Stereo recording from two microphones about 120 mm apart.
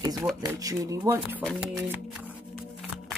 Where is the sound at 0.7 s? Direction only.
30° right (ahead or behind).